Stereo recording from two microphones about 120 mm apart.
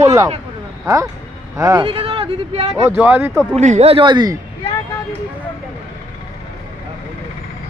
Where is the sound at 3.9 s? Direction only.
40° right (ahead or behind).